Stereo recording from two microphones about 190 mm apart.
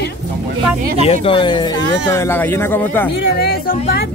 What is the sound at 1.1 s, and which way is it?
Speech, 25° left (ahead or behind).